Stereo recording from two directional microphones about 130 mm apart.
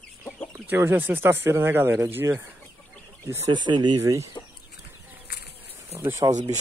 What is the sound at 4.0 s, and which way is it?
Speech, 25° right (ahead or behind).